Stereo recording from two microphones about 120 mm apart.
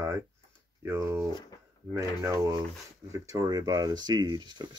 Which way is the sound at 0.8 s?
20° right (ahead or behind).